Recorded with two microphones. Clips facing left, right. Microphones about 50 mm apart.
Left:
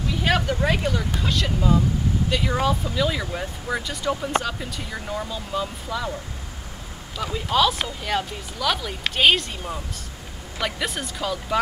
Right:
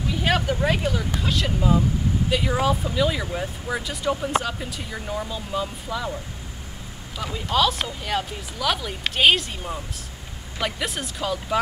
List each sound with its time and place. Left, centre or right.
0.1 s a sound: centre
0.6 s speech: centre
7.2 s speech: centre